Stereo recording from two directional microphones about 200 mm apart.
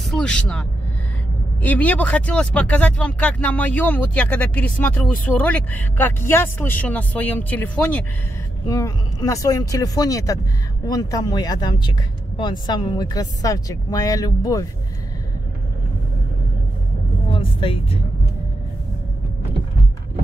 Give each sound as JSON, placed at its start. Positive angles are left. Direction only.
{"t": 0.1, "sound": "speech", "side_deg": 5}
{"t": 17.3, "sound": "speech", "side_deg": 25}